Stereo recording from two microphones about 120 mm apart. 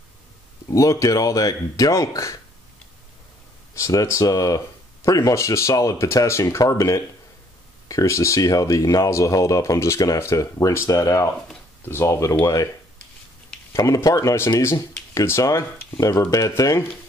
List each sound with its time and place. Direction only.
0.7 s speech: 25° left (ahead or behind)
3.7 s speech: 25° left (ahead or behind)
13.7 s speech: 25° left (ahead or behind)